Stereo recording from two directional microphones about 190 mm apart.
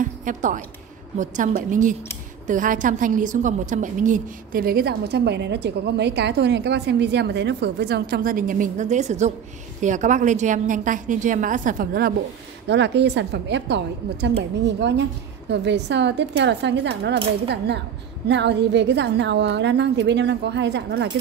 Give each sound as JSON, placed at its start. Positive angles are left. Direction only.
{"t": 0.0, "sound": "music", "side_deg": -45}
{"t": 1.1, "sound": "a woman's voice", "side_deg": -40}
{"t": 12.6, "sound": "a woman's voice", "side_deg": -65}
{"t": 18.3, "sound": "a woman's voice", "side_deg": -65}